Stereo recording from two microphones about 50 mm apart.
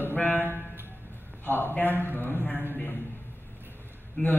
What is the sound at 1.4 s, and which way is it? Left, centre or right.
Speech, left.